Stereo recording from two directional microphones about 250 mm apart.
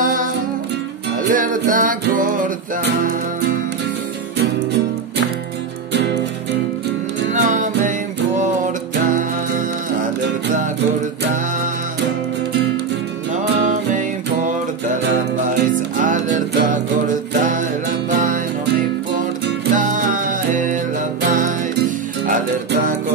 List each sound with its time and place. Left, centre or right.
0.0 s music: right
1.3 s music: right
7.3 s music: right
13.7 s music: right